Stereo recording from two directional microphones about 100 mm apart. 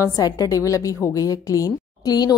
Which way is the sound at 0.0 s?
35° left (ahead or behind).